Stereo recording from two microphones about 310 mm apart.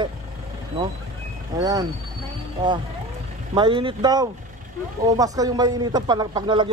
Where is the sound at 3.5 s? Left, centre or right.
Centre.